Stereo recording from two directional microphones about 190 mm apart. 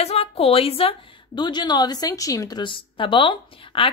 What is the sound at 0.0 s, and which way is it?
A woman's voice, 35° left (ahead or behind).